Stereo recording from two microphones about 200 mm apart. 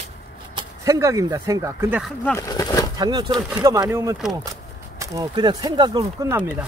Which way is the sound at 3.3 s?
10° right (ahead or behind).